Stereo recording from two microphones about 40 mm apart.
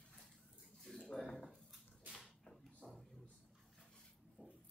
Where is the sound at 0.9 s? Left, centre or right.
Centre.